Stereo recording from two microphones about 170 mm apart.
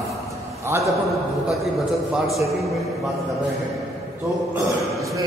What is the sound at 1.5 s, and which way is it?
Speech, centre (ahead or behind).